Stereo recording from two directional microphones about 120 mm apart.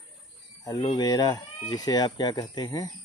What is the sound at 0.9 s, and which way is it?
Speech, 35° left (ahead or behind).